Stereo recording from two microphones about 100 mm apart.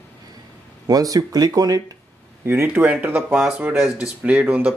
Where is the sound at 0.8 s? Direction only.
40° right (ahead or behind).